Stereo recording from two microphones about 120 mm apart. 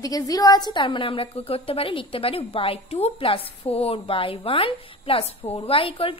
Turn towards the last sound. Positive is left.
turn(degrees=50)  # may be behind; listen again after turning